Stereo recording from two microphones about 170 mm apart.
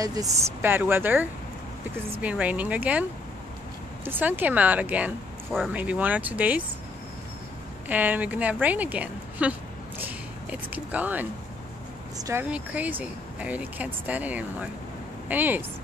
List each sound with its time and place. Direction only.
0.0 s speech: 20° right (ahead or behind)
5.5 s speech: centre (ahead or behind)
5.8 s speech: 10° right (ahead or behind)
7.9 s a woman's voice: 10° right (ahead or behind)
12.4 s speech: 10° right (ahead or behind)